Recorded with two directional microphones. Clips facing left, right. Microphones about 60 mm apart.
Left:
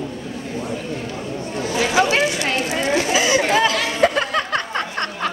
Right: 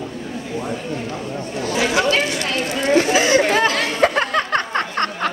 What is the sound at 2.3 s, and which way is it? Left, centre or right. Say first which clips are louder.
Chatter: left 1 dB; right.